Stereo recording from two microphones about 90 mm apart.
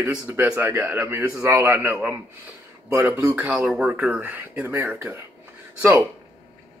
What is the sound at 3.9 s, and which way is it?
Speech, 20° right (ahead or behind).